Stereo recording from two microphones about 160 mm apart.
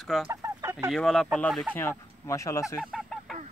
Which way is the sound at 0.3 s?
20° right (ahead or behind).